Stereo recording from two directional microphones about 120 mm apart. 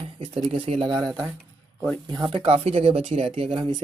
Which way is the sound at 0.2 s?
50° right (ahead or behind).